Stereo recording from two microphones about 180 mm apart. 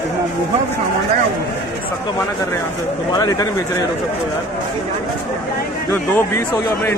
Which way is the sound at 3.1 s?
20° left (ahead or behind).